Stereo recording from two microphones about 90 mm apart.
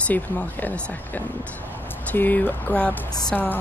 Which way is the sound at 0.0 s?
15° left (ahead or behind).